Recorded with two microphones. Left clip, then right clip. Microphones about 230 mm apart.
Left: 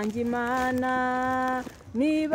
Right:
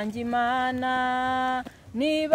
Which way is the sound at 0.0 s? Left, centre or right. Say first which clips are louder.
Right 2 dB; right.